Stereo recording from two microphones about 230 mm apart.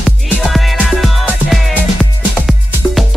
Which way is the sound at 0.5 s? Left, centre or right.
Centre.